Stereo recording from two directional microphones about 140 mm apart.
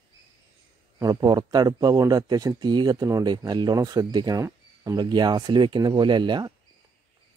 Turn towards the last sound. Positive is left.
turn(degrees=-30)  # may be behind; listen again after turning